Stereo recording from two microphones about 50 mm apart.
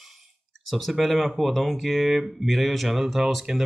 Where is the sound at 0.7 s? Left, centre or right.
Centre.